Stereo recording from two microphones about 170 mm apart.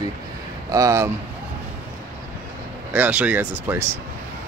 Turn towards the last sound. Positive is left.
turn(degrees=-10)  # may be behind; listen again after turning